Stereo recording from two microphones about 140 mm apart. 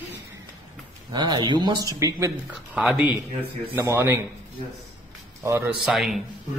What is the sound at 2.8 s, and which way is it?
Speech, 5° right (ahead or behind).